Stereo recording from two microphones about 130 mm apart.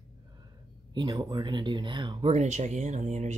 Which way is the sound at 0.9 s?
30° right (ahead or behind).